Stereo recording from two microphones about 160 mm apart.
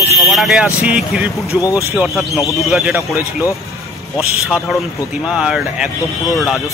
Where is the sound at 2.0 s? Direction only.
Centre (ahead or behind).